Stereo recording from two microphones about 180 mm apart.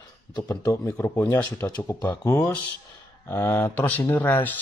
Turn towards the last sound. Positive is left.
turn(degrees=10)  # may be behind; listen again after turning